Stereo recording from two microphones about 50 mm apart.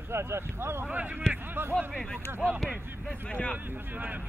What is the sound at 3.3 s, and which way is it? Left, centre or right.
Speech, left.